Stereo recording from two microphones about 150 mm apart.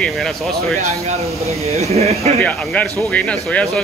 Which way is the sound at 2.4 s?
10° left (ahead or behind).